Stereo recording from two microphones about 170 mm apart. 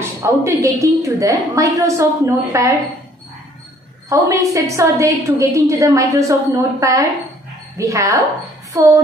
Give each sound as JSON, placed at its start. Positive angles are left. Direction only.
{"t": 0.2, "sound": "a woman's voice", "side_deg": -20}
{"t": 4.1, "sound": "a woman's voice", "side_deg": -20}
{"t": 8.7, "sound": "a sound", "side_deg": -15}